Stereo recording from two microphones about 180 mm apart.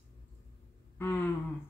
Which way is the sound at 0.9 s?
15° left (ahead or behind).